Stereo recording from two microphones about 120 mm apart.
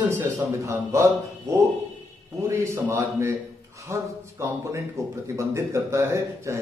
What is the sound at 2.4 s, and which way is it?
A man's voice, 25° right (ahead or behind).